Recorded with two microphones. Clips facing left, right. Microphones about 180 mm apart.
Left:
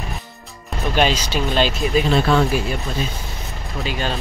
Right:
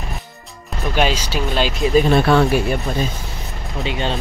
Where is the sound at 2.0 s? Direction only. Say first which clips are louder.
Right 3 dB; 60° right (ahead or behind).